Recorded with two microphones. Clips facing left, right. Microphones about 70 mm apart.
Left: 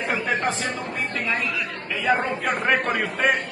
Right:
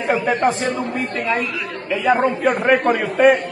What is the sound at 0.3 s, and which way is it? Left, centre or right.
Speech, right.